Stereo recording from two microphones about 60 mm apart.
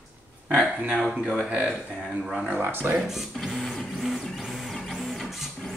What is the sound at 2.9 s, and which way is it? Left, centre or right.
Printer, centre.